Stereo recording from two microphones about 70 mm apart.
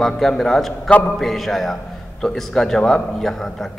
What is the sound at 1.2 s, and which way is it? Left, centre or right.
A man's voice, centre.